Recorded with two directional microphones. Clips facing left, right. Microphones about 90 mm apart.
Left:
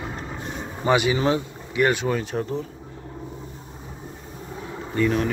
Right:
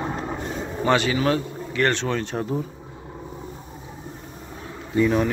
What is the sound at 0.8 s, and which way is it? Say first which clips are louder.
Speech: left 1 dB; 15° left (ahead or behind).